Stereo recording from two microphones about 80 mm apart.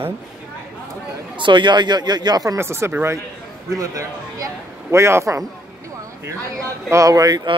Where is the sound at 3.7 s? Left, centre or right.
Right.